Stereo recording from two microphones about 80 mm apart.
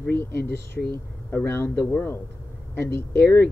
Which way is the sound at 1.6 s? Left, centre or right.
Left.